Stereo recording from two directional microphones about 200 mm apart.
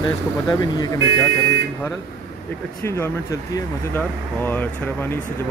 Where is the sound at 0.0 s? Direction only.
20° left (ahead or behind).